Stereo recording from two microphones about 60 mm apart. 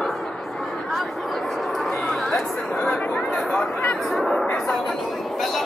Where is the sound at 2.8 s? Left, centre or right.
Left.